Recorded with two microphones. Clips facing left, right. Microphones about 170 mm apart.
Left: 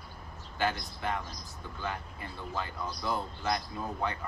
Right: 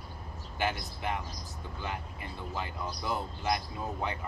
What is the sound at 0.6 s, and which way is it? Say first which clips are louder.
Speech: left 1 dB; 20° right (ahead or behind).